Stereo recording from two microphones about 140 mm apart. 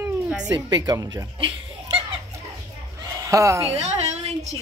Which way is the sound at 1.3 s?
40° right (ahead or behind).